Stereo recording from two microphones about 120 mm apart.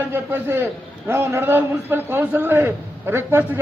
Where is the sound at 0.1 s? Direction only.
20° right (ahead or behind).